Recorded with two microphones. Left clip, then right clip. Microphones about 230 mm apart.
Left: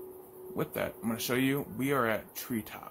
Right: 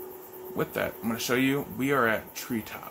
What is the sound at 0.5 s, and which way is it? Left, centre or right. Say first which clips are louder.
Speech: right 4 dB; centre.